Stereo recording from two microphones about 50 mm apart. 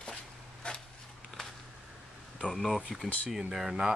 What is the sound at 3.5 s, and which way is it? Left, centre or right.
Speech, centre.